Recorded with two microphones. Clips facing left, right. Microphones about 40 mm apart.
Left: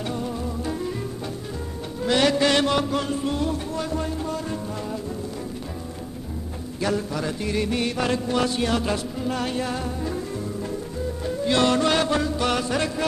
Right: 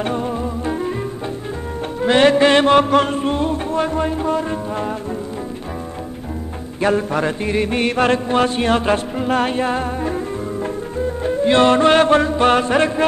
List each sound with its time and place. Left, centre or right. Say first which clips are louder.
0.0 s music: right 7 dB; right
2.0 s mantra: right 7 dB; right
6.8 s mantra: right 8 dB; right